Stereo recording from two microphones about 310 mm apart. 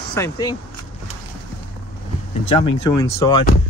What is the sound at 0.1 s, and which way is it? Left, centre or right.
Speech, centre.